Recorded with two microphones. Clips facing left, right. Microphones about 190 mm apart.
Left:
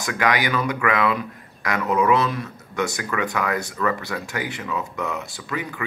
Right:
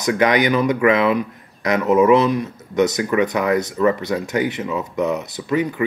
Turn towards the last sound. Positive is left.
turn(degrees=-25)  # may be behind; listen again after turning